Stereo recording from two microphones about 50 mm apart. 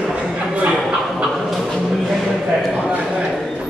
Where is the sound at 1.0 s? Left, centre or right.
Centre.